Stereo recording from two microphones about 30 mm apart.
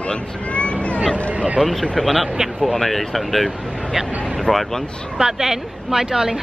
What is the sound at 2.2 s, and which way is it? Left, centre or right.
Speech, centre.